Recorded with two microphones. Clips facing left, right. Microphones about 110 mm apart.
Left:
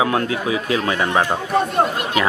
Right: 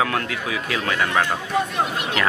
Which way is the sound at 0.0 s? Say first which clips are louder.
Left 4 dB; 25° left (ahead or behind).